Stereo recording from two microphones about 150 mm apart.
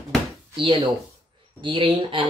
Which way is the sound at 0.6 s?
35° right (ahead or behind).